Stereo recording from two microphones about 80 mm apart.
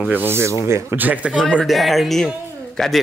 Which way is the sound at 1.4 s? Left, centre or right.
Centre.